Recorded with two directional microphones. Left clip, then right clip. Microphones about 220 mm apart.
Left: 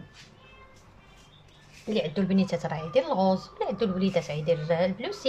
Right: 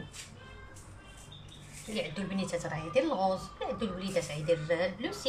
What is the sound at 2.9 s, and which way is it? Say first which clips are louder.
A woman's voice: left 5 dB; 40° left (ahead or behind).